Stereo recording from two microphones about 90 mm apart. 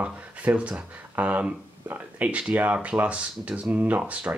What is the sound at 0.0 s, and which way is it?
Speech, 15° right (ahead or behind).